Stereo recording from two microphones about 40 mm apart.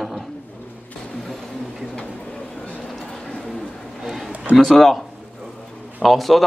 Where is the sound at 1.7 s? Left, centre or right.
Centre.